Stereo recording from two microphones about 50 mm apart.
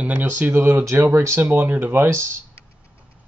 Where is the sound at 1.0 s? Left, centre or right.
Right.